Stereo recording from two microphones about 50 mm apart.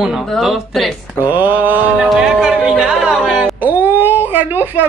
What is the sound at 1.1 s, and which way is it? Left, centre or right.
Speech, right.